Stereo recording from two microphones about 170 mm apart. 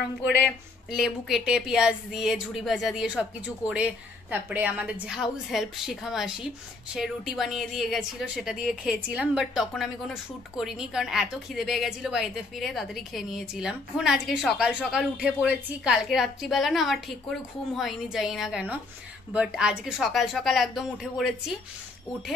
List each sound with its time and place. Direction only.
0.8 s a woman's voice: centre (ahead or behind)